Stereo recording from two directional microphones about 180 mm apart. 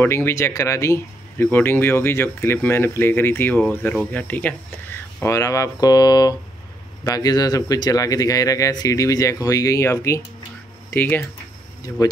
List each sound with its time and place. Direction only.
0.0 s speech: 15° left (ahead or behind)